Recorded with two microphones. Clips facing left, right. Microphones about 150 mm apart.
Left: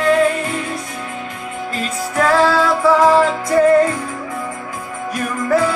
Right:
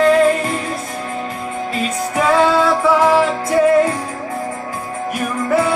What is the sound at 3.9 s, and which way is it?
Music, 35° right (ahead or behind).